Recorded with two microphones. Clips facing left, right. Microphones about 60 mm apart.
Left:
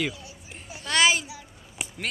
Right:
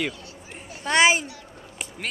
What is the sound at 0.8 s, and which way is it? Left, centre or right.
Speech, right.